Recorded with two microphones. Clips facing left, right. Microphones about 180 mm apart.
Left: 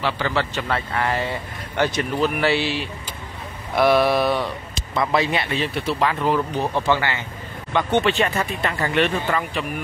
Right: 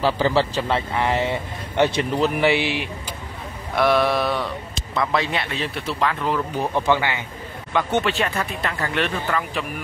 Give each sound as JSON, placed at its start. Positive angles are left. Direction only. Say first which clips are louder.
{"t": 0.0, "sound": "speech", "louder": "right 4 dB", "side_deg": -35}
{"t": 3.7, "sound": "speech", "louder": "left 2 dB", "side_deg": 5}
{"t": 6.5, "sound": "speech", "louder": "even", "side_deg": -10}